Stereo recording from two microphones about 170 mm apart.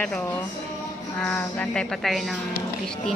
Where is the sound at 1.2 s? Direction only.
10° left (ahead or behind).